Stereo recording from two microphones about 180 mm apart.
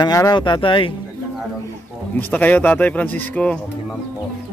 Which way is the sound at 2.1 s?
10° left (ahead or behind).